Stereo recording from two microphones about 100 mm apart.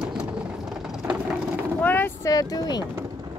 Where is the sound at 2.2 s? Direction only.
35° left (ahead or behind).